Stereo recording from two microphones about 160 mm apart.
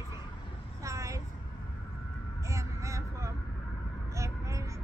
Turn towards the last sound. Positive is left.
turn(degrees=-20)  # may be behind; listen again after turning